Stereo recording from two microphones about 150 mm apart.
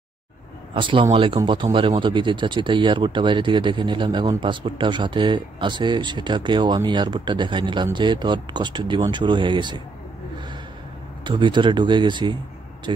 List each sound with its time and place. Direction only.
0.7 s speech: 35° right (ahead or behind)
11.2 s speech: 30° right (ahead or behind)